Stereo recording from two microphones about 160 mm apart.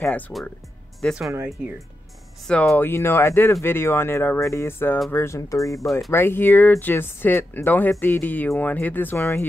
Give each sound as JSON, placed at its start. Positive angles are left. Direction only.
{"t": 0.0, "sound": "speech", "side_deg": 5}
{"t": 2.4, "sound": "speech", "side_deg": 5}
{"t": 2.7, "sound": "speech", "side_deg": 15}